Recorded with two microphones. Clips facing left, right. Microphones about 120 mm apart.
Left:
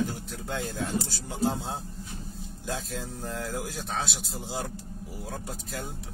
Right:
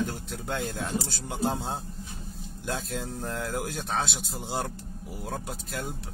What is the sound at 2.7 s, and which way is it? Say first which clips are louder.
Speech: right 2 dB; 65° right (ahead or behind).